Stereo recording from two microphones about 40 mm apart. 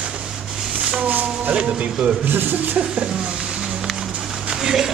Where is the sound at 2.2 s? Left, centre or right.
Right.